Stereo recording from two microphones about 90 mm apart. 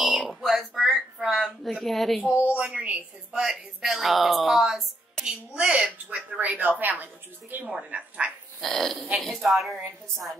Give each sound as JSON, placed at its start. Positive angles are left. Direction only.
{"t": 0.0, "sound": "a sound", "side_deg": 0}
{"t": 2.2, "sound": "a woman's voice", "side_deg": -15}
{"t": 3.4, "sound": "a woman's voice", "side_deg": -5}
{"t": 8.5, "sound": "a woman's voice", "side_deg": 5}